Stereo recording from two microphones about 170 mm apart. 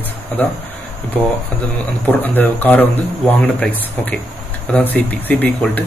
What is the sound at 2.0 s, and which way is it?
Speech, 10° left (ahead or behind).